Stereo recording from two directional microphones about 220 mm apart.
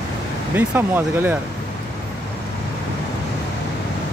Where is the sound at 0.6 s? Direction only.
10° right (ahead or behind).